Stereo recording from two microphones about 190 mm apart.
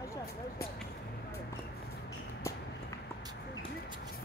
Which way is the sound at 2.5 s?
15° left (ahead or behind).